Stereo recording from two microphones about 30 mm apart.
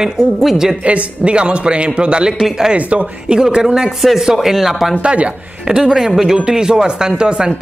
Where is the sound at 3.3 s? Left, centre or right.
Right.